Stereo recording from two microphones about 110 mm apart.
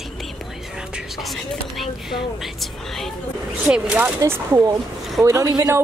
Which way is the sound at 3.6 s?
10° right (ahead or behind).